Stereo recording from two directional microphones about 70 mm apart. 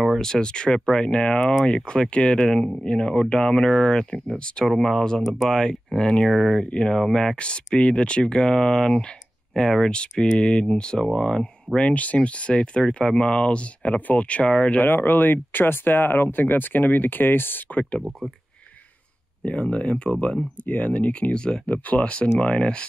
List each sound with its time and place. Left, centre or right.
0.0 s speech: centre
14.9 s speech: left
19.4 s speech: centre